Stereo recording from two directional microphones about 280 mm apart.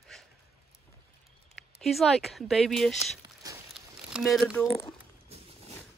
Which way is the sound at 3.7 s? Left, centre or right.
Centre.